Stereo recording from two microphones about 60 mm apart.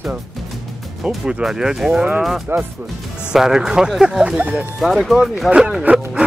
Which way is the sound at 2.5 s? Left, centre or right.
Right.